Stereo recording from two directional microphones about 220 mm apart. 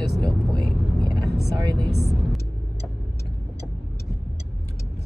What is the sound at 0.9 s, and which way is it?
Vehicle, 20° right (ahead or behind).